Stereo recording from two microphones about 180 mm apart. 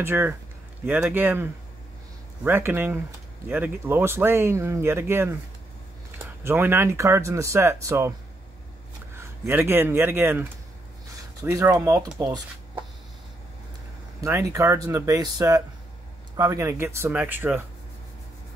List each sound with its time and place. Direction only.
0.0 s speech: 10° right (ahead or behind)
9.1 s speech: 10° right (ahead or behind)
11.4 s speech: 15° right (ahead or behind)
14.2 s speech: 15° right (ahead or behind)